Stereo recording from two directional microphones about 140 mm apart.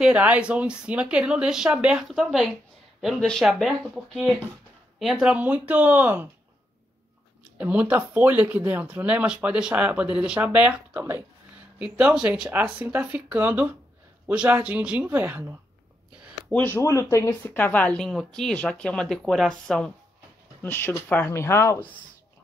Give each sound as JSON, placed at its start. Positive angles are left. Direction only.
{"t": 0.0, "sound": "speech", "side_deg": -10}
{"t": 7.5, "sound": "speech", "side_deg": -10}
{"t": 16.5, "sound": "speech", "side_deg": 15}
{"t": 20.6, "sound": "speech", "side_deg": 15}